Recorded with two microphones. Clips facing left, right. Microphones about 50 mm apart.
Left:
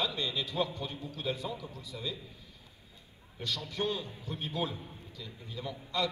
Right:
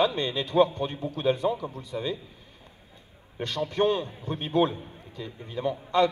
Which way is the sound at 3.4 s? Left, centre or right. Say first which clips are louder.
Right 9 dB; right.